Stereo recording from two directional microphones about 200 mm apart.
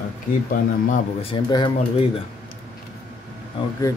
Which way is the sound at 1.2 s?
25° left (ahead or behind).